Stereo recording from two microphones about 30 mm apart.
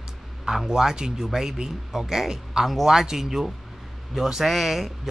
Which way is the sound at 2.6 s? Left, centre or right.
Centre.